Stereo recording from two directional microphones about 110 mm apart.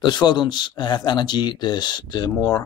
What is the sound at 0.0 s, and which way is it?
Speech, 40° left (ahead or behind).